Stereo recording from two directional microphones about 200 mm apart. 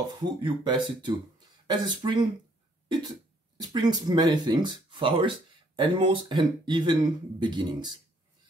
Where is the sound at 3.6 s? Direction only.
20° right (ahead or behind).